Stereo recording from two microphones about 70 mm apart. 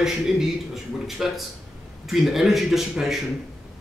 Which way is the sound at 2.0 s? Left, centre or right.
Centre.